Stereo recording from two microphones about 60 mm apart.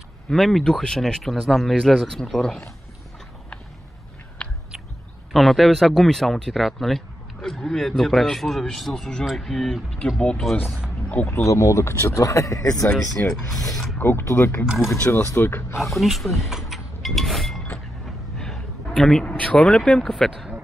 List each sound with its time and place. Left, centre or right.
0.3 s speech: centre
5.3 s speech: centre
10.4 s speech: centre
11.2 s speech: left
13.2 s speech: left
14.9 s speech: left
16.0 s speech: centre
18.4 s a sound: centre
19.2 s speech: left